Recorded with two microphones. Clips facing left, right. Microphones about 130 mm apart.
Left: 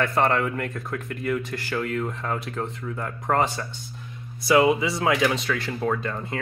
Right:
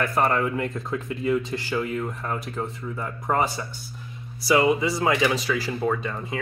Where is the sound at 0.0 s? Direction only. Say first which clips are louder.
Left 1 dB; 5° right (ahead or behind).